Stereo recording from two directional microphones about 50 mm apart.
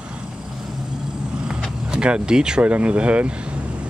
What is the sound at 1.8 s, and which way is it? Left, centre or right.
Speech, centre.